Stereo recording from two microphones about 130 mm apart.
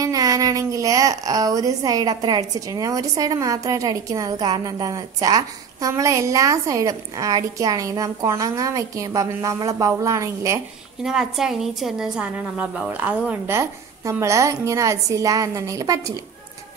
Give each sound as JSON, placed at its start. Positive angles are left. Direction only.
{"t": 0.0, "sound": "speech", "side_deg": -30}
{"t": 11.0, "sound": "a woman's voice", "side_deg": -5}